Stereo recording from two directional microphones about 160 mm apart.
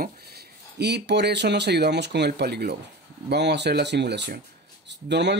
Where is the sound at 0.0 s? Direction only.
85° right.